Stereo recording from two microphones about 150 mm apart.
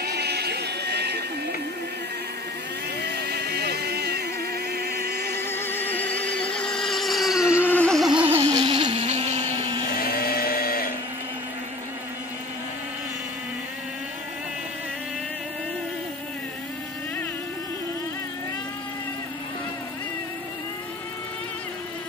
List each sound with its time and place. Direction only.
0.0 s music: 90° right
3.1 s vehicle: 90° right
5.4 s vehicle: 15° left (ahead or behind); by 7.7 s 5° right (ahead or behind)
7.7 s a sound: 5° left (ahead or behind)
8.5 s vehicle: 30° right (ahead or behind)
9.9 s blender: 85° left